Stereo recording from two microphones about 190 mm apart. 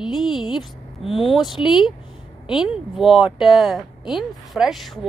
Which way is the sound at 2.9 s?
Centre (ahead or behind).